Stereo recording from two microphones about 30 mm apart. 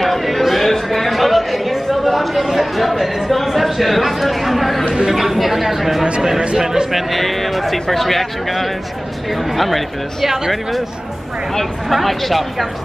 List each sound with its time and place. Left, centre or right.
0.0 s chatter: centre
3.4 s a sound: centre
4.8 s chatter: right
5.1 s chatter: centre
6.5 s a sound: centre
6.9 s music: centre
7.9 s speech: centre
10.2 s speech: centre
11.9 s speech: centre